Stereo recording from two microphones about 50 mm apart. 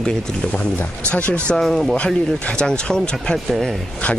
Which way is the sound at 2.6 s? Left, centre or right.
Centre.